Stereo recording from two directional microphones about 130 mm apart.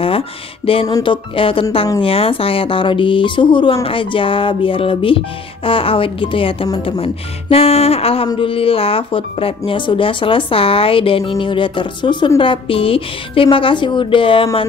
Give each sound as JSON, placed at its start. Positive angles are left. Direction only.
{"t": 0.7, "sound": "speech", "side_deg": 45}